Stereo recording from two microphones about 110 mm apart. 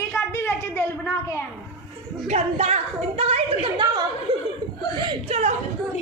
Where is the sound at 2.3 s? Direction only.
90° right; by 3.6 s 65° right (ahead or behind).